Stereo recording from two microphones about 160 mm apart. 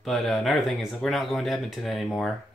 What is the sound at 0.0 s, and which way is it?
Speech, centre (ahead or behind).